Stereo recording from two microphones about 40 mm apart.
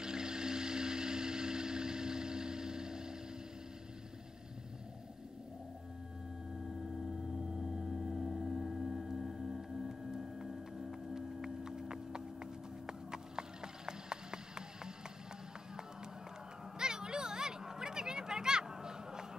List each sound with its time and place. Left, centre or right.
0.0 s vehicle: centre
7.1 s music: centre
16.7 s a sound: centre